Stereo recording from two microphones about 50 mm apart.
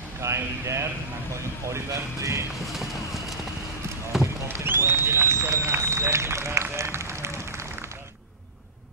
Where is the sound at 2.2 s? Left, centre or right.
Right.